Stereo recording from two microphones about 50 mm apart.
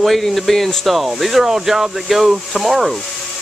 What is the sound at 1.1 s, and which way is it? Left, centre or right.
Speech, centre.